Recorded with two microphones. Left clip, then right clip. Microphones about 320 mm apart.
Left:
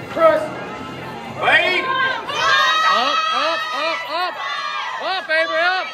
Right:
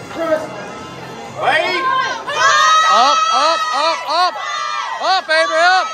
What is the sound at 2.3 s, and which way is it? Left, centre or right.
Crowd, right.